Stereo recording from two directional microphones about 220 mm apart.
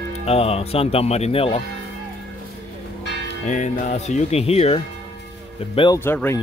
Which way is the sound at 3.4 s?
30° left (ahead or behind).